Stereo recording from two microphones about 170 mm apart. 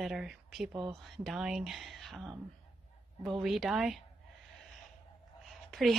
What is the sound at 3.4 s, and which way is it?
Speech, centre (ahead or behind).